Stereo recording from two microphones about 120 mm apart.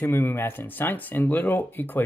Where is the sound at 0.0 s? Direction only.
20° left (ahead or behind).